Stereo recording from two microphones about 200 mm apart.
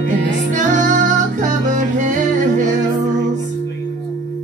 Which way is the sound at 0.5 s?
40° right (ahead or behind).